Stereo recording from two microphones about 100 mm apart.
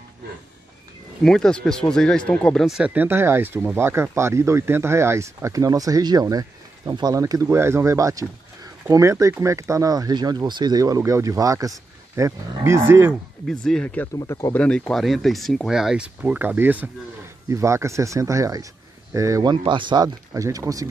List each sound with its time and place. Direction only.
1.2 s speech: 5° left (ahead or behind)
2.6 s speech: 5° right (ahead or behind)
2.9 s speech: 20° right (ahead or behind)
13.5 s speech: 5° left (ahead or behind)
14.2 s speech: 30° left (ahead or behind)
14.5 s speech: 15° left (ahead or behind); by 16.9 s 20° right (ahead or behind)
17.5 s speech: 30° right (ahead or behind)
19.4 s a man's voice: 55° right (ahead or behind)
20.3 s speech: 35° right (ahead or behind)